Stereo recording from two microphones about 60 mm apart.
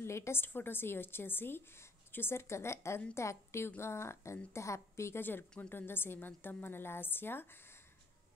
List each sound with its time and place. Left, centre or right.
0.0 s a woman's voice: left